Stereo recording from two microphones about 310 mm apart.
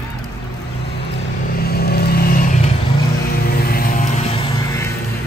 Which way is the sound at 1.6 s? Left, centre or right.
Left.